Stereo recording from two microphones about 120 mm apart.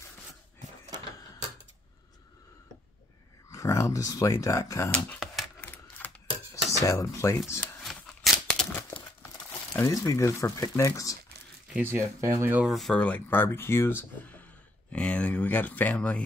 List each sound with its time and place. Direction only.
3.4 s speech: 25° left (ahead or behind)
5.6 s typewriter: 15° left (ahead or behind)
6.5 s cutlery: 25° left (ahead or behind)
7.8 s tearing: centre (ahead or behind)
9.8 s speech: 25° left (ahead or behind)
11.7 s speech: 20° right (ahead or behind)
12.6 s speech: centre (ahead or behind)